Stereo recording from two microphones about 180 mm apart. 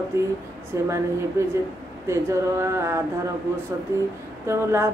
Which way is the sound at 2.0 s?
15° right (ahead or behind).